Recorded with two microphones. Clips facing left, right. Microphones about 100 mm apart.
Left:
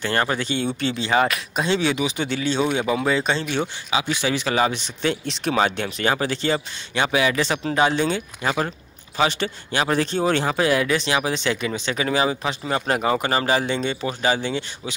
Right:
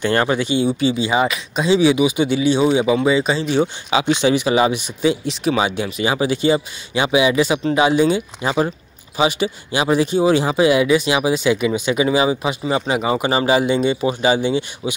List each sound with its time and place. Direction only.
0.0 s speech: 20° right (ahead or behind)
3.4 s speech: 15° right (ahead or behind)